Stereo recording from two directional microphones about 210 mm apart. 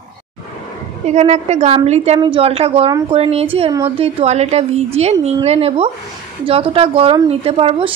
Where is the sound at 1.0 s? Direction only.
35° right (ahead or behind).